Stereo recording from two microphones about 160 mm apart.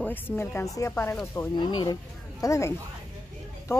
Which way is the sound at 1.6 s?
25° left (ahead or behind).